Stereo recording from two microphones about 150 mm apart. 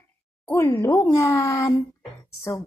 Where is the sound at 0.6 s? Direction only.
20° left (ahead or behind).